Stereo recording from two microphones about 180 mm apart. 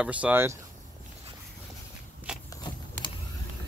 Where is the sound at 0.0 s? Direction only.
5° right (ahead or behind).